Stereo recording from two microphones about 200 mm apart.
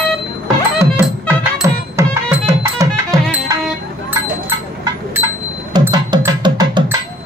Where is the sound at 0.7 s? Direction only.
10° right (ahead or behind).